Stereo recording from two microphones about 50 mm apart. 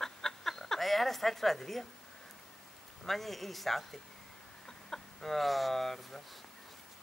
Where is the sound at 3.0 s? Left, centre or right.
Centre.